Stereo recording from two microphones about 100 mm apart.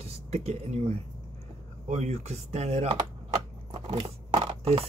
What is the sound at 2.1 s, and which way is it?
Speech, 90° right.